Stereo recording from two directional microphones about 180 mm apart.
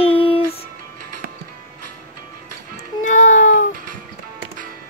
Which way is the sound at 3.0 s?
45° left (ahead or behind).